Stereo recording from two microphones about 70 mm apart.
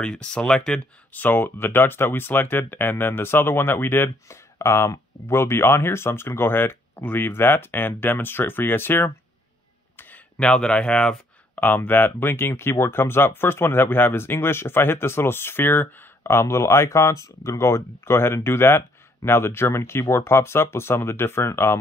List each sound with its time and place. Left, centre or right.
0.0 s speech: centre; by 9.1 s left
10.3 s speech: centre
11.5 s speech: left